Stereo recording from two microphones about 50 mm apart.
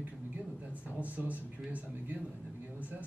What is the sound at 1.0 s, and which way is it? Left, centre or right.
Speech, right.